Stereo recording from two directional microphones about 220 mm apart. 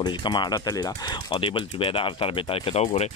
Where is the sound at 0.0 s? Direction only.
20° left (ahead or behind).